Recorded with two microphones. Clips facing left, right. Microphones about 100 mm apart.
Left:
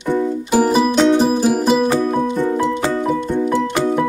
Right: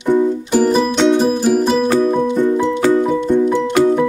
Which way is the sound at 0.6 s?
5° left (ahead or behind).